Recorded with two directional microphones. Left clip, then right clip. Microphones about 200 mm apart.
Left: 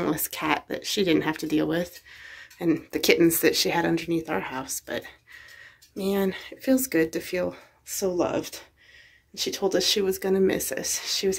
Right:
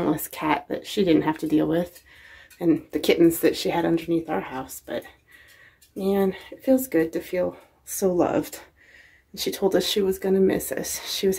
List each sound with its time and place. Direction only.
0.0 s speech: 5° right (ahead or behind)
8.2 s speech: 20° right (ahead or behind)